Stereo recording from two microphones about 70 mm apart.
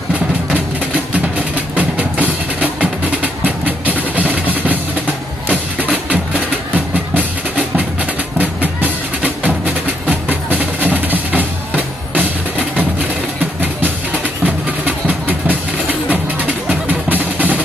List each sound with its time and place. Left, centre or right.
1.8 s music: right
6.0 s music: right
14.4 s music: right